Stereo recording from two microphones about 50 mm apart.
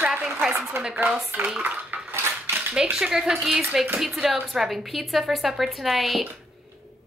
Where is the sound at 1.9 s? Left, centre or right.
Right.